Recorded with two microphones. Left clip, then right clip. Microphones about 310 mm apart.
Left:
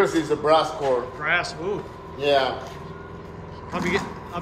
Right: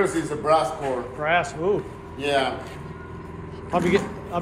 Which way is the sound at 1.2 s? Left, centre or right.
Centre.